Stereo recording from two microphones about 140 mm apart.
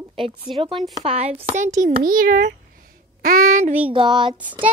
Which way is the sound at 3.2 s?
90° right.